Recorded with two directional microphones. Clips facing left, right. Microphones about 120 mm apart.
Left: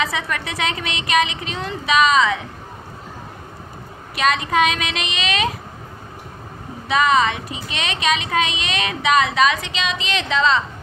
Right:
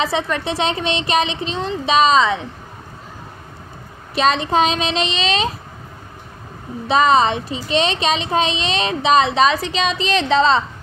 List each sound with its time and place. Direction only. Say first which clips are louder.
0.0 s a woman's voice: right 4 dB; 30° right (ahead or behind)
4.1 s a woman's voice: right 3 dB; 30° right (ahead or behind)
6.9 s a child's voice: right 3 dB; 30° right (ahead or behind)